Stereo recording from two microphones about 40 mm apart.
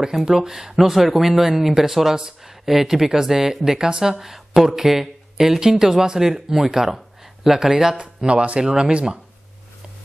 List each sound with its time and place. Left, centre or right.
0.0 s speech: centre
8.0 s speech: right